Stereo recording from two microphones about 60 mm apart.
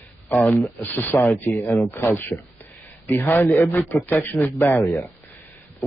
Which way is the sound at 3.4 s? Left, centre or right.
Left.